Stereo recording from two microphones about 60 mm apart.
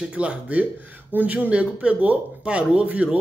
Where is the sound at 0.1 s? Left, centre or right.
Centre.